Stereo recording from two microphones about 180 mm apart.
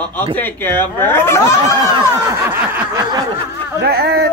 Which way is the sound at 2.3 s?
10° right (ahead or behind).